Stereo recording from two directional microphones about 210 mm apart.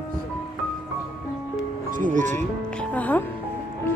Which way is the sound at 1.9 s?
40° right (ahead or behind).